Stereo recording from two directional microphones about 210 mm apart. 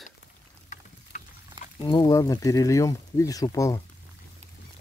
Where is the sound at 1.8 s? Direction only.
20° left (ahead or behind).